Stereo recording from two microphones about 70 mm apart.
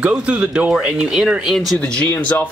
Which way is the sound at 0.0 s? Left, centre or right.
Centre.